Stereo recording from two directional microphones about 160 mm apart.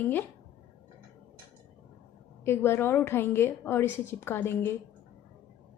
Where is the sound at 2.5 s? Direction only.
15° left (ahead or behind).